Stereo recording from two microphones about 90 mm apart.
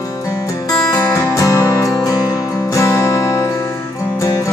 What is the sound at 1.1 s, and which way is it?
Music, 35° left (ahead or behind).